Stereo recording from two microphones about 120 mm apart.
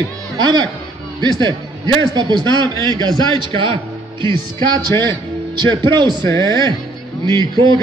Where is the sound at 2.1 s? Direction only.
35° right (ahead or behind).